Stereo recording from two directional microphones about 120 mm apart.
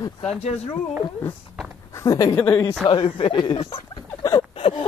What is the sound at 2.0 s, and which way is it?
Speech, 30° left (ahead or behind).